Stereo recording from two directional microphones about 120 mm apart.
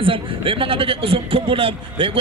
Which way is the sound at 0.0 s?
45° right (ahead or behind).